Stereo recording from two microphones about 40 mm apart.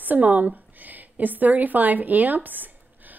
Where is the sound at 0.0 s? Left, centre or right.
Right.